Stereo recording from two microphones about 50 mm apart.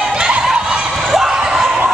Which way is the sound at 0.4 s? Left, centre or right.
Centre.